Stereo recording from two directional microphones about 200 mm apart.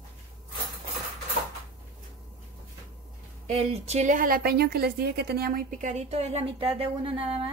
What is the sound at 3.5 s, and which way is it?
A woman's voice, 35° right (ahead or behind).